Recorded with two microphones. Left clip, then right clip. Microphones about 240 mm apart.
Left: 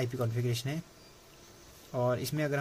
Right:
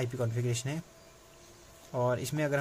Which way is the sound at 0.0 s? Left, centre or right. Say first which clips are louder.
Even; centre.